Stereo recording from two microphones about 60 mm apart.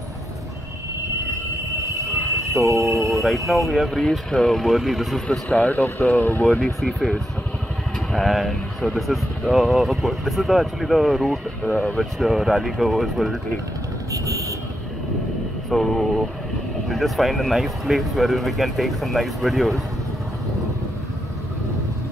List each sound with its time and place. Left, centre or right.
1.8 s train: right
2.8 s speech: centre
4.0 s speech: centre
5.5 s speech: left
6.6 s speech: centre
14.1 s vehicle: right
15.7 s speech: centre